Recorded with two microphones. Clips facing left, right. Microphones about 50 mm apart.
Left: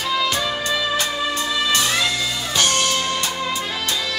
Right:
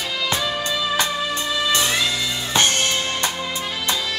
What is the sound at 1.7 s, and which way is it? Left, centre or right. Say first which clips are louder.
Music: even; right.